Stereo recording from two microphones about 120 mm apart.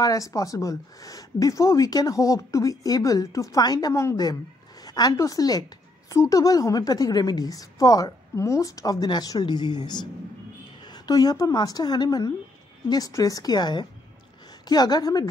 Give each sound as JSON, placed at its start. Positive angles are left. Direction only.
{"t": 0.0, "sound": "a woman's voice", "side_deg": 30}
{"t": 11.1, "sound": "a woman's voice", "side_deg": 35}